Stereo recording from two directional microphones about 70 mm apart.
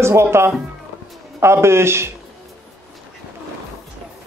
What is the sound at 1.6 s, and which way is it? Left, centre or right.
Speech, right.